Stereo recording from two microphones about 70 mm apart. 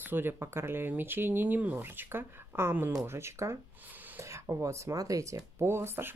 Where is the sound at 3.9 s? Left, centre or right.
Right.